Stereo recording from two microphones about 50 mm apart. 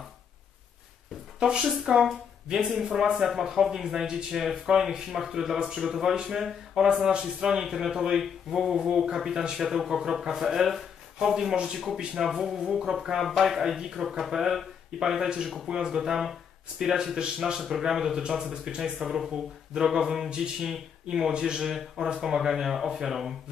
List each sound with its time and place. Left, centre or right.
1.4 s speech: centre
12.2 s speech: centre
18.4 s speech: centre
18.8 s speech: centre
21.3 s speech: centre